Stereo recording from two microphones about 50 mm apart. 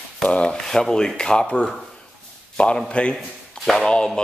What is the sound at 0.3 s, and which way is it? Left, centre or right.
Speech, left.